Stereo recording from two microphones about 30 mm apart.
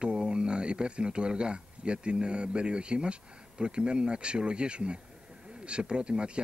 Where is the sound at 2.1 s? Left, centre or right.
Right.